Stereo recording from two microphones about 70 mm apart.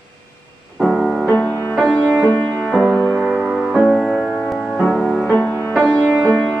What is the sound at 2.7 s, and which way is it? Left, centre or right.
Music, centre.